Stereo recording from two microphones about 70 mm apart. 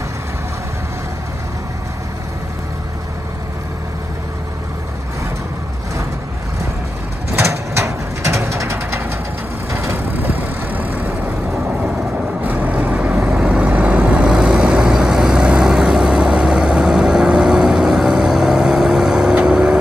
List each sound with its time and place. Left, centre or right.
7.3 s bird: right
9.7 s vehicle: right
12.4 s vehicle: right